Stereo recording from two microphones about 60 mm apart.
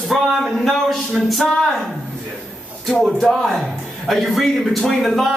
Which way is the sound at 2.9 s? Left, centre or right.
Centre.